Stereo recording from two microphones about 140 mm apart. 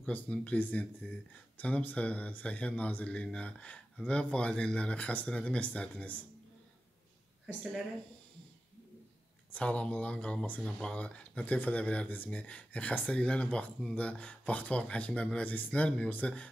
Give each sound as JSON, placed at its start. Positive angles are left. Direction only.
{"t": 0.0, "sound": "speech", "side_deg": 5}
{"t": 9.5, "sound": "speech", "side_deg": 10}